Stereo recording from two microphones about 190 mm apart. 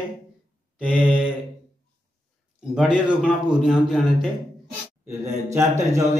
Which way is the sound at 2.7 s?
5° right (ahead or behind).